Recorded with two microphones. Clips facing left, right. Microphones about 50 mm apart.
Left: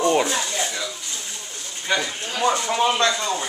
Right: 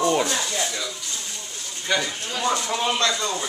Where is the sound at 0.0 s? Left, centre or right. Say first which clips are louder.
Left 2 dB; centre.